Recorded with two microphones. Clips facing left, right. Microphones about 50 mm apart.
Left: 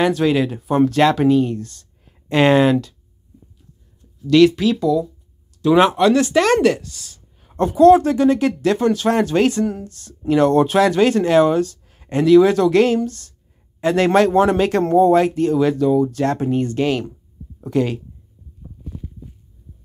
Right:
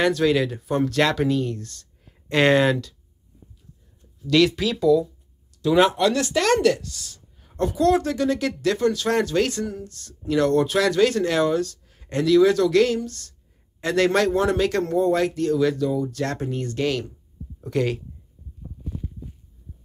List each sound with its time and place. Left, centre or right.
0.0 s speech: centre
4.2 s speech: centre
5.6 s speech: centre
7.4 s speech: left
17.6 s speech: centre